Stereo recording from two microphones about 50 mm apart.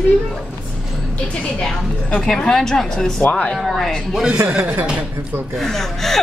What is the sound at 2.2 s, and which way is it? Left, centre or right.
Speech, centre.